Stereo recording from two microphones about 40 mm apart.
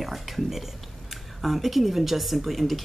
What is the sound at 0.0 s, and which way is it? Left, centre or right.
Speech, centre.